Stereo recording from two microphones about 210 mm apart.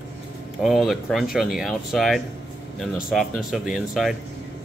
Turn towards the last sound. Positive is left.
turn(degrees=0)  # may be behind; listen again after turning